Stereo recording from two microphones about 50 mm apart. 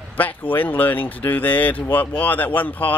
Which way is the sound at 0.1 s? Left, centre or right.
Left.